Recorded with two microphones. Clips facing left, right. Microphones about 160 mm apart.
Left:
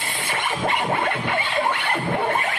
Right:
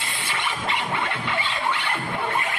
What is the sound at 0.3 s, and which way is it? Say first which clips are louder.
Scratching: left 4 dB; 45° left (ahead or behind).